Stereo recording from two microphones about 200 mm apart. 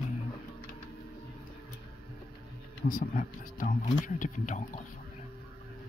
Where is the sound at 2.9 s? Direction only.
40° left (ahead or behind).